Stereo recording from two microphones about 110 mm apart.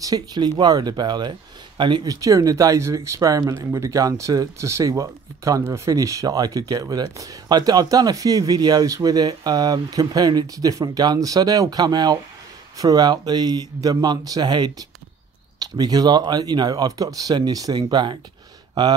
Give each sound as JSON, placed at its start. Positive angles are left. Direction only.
{"t": 0.0, "sound": "speech", "side_deg": -35}
{"t": 2.1, "sound": "speech", "side_deg": -30}